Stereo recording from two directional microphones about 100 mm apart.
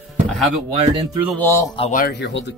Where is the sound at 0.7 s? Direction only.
65° right (ahead or behind).